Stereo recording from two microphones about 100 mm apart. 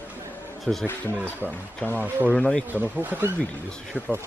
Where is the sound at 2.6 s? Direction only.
15° right (ahead or behind).